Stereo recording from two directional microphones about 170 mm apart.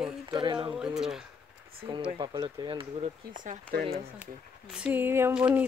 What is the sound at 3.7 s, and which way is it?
Speech, 75° right (ahead or behind).